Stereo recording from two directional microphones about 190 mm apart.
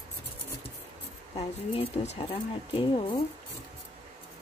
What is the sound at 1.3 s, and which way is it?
Speech, 30° left (ahead or behind).